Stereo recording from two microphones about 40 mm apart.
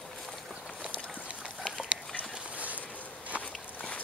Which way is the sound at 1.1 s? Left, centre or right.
Right.